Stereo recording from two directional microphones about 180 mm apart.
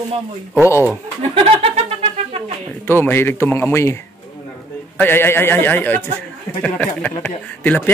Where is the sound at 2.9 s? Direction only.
10° left (ahead or behind).